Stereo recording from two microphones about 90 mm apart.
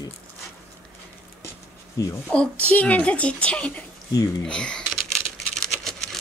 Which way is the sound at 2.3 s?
15° left (ahead or behind).